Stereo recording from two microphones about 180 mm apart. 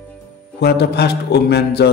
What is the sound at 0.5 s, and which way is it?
A man's voice, 65° left (ahead or behind).